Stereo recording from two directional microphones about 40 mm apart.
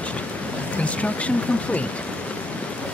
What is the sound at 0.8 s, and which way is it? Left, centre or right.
Speech, left.